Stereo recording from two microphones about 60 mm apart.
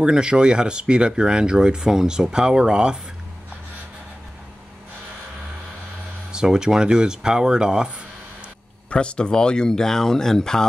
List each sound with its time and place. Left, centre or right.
0.0 s speech: centre
6.3 s speech: centre
8.9 s speech: centre